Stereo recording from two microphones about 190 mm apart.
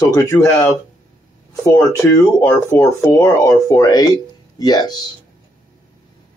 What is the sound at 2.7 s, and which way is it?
Speech, 15° left (ahead or behind).